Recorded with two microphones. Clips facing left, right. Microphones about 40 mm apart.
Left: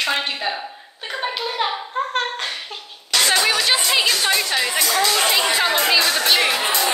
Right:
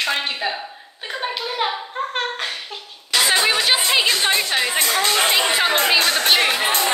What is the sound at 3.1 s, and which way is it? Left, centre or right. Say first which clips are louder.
A woman's voice: even; centre.